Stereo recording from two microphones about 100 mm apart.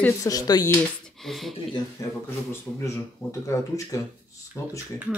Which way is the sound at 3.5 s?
30° left (ahead or behind).